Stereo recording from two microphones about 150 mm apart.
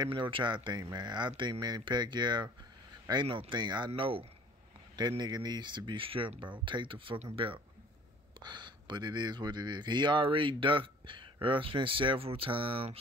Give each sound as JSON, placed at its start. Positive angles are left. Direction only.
{"t": 0.0, "sound": "speech", "side_deg": -35}